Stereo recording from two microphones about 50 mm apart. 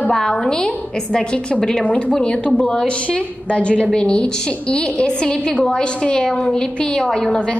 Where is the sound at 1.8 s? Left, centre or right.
Left; by 7.5 s centre.